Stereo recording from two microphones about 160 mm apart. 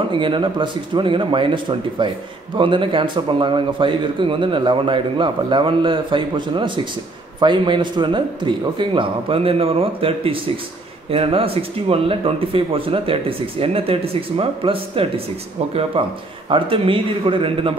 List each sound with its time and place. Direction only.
0.1 s a man's voice: 30° right (ahead or behind)
16.4 s a man's voice: 35° right (ahead or behind)